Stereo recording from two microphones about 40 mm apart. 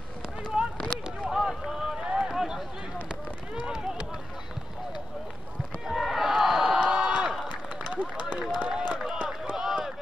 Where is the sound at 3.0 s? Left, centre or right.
Right.